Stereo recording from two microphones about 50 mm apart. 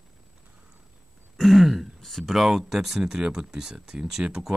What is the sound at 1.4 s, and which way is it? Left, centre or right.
Speech, centre.